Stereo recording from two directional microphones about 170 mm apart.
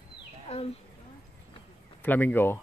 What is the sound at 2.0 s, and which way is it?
Speech, 10° left (ahead or behind).